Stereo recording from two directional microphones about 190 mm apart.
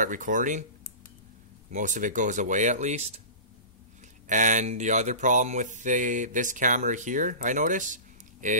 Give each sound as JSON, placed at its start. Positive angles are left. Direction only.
{"t": 0.0, "sound": "speech", "side_deg": -45}
{"t": 1.7, "sound": "mantra", "side_deg": -40}
{"t": 4.3, "sound": "mantra", "side_deg": -40}